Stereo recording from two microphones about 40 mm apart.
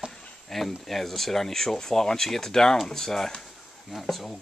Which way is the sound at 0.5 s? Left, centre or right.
Centre.